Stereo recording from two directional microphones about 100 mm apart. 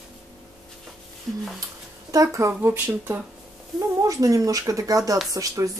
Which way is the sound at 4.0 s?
35° right (ahead or behind).